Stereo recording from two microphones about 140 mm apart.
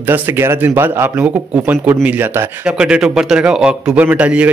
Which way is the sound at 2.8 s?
5° right (ahead or behind).